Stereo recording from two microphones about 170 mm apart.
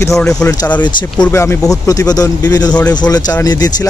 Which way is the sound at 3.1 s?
20° left (ahead or behind).